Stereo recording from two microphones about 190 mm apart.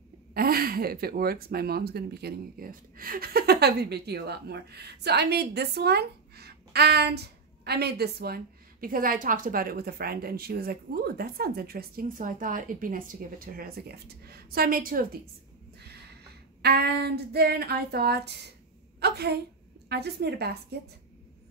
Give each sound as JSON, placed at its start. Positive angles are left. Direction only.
{"t": 0.3, "sound": "speech", "side_deg": -50}
{"t": 16.6, "sound": "a woman's voice", "side_deg": -60}